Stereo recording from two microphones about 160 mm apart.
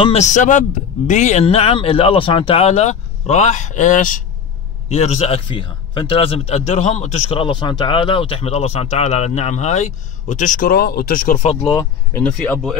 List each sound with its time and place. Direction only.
0.0 s a man's voice: 45° left (ahead or behind); by 11.3 s 60° left (ahead or behind)
11.6 s speech: 20° left (ahead or behind)
12.2 s speech: 10° left (ahead or behind)